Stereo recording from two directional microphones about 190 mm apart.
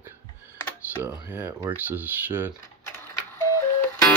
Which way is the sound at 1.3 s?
15° right (ahead or behind).